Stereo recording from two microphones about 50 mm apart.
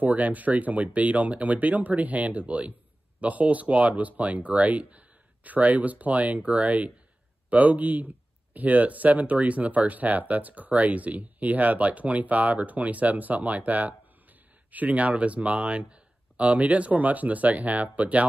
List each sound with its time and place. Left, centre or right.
0.0 s speech: right